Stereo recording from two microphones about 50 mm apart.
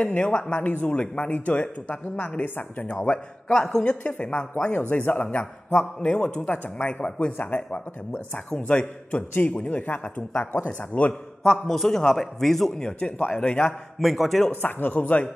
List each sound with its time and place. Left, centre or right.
0.0 s a man's voice: left
2.9 s a man's voice: centre
4.7 s a man's voice: left
8.1 s a man's voice: left
11.4 s a man's voice: centre; by 13.7 s left
13.9 s a man's voice: centre
14.6 s speech: left